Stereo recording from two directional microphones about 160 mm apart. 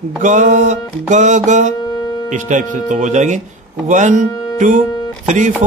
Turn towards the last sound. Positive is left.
turn(degrees=-50)  # may be behind; listen again after turning